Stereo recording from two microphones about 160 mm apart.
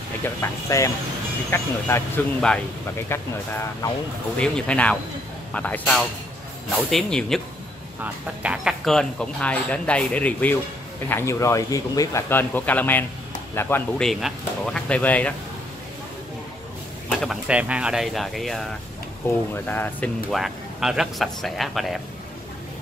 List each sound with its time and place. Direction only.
0.4 s speech: 20° left (ahead or behind)
3.1 s speech: 15° left (ahead or behind)
8.0 s speech: 10° right (ahead or behind); by 14.0 s 15° left (ahead or behind)
14.0 s speech: 5° left (ahead or behind)
17.2 s speech: 5° right (ahead or behind)
19.2 s speech: 10° left (ahead or behind)
20.2 s speech: centre (ahead or behind)